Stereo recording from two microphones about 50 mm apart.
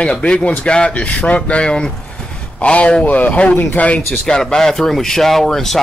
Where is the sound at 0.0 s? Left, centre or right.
Left.